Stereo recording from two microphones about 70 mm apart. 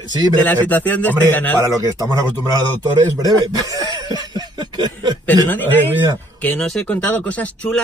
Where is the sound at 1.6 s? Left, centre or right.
Right.